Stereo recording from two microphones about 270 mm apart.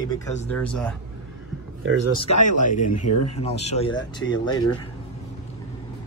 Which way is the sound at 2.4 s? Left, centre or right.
Left.